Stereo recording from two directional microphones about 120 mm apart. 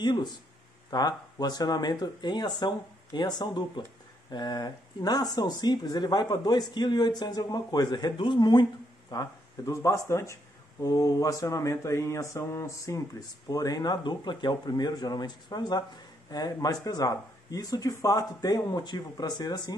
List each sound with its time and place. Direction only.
0.0 s speech: 40° left (ahead or behind)
9.1 s speech: 30° left (ahead or behind)